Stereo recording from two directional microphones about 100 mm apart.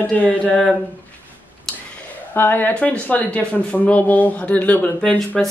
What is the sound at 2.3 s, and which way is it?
Speech, 20° left (ahead or behind).